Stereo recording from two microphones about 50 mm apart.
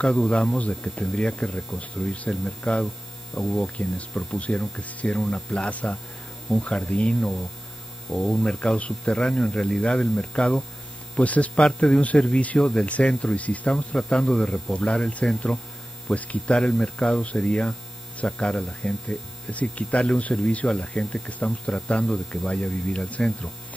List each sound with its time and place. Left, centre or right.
0.0 s speech: centre
3.7 s speech: left
8.1 s speech: centre
8.5 s speech: left